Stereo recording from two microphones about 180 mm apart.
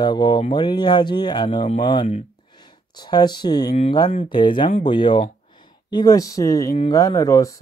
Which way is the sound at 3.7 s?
35° left (ahead or behind).